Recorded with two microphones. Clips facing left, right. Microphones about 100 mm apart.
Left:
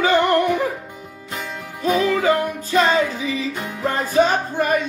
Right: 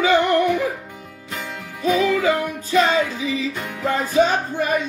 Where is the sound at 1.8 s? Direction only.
40° left (ahead or behind).